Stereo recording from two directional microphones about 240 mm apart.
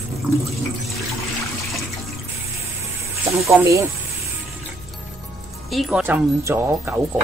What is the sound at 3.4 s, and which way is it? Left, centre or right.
Speech, centre.